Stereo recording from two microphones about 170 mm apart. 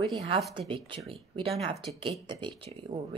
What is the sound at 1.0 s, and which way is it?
Speech, 30° right (ahead or behind).